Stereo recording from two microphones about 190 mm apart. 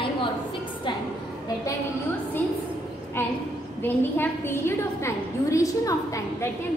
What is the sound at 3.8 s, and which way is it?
A woman's voice, 10° left (ahead or behind).